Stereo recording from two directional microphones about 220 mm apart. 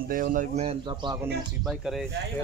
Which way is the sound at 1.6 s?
Centre (ahead or behind).